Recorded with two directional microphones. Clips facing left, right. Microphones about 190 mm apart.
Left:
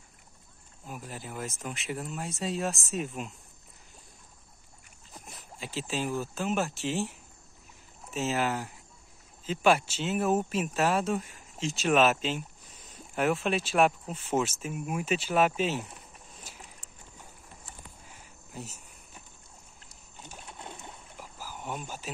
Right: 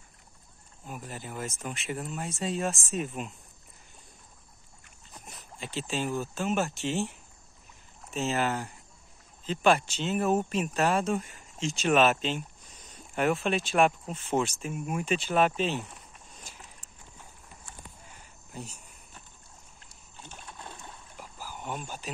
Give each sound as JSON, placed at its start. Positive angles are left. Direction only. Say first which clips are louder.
{"t": 0.8, "sound": "speech", "louder": "right 1 dB", "side_deg": 0}
{"t": 5.1, "sound": "speech", "louder": "even", "side_deg": 0}
{"t": 16.5, "sound": "a sound", "louder": "even", "side_deg": 5}
{"t": 18.5, "sound": "cricket", "louder": "even", "side_deg": 5}
{"t": 20.2, "sound": "splash", "louder": "even", "side_deg": 15}
{"t": 21.2, "sound": "cricket", "louder": "right 1 dB", "side_deg": 5}